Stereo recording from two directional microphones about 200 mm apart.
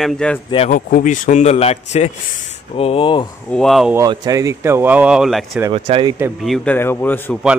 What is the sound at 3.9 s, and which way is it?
Speech, 20° right (ahead or behind).